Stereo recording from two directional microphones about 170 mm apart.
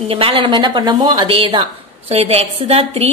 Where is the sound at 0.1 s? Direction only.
30° right (ahead or behind).